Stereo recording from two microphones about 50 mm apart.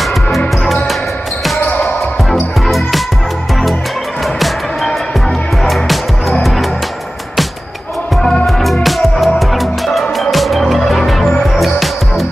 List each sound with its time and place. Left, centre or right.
1.6 s basketball bounce: left
8.8 s music: centre